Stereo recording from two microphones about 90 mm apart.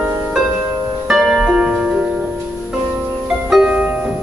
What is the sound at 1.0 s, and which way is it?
Harp, 10° right (ahead or behind).